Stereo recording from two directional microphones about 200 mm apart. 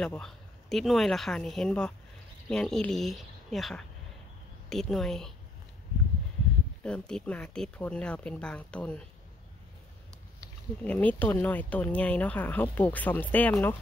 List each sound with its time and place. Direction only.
0.0 s speech: 5° left (ahead or behind)
6.8 s speech: 5° left (ahead or behind)
10.8 s speech: 5° left (ahead or behind)